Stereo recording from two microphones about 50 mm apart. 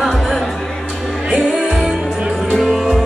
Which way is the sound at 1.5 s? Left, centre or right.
Centre.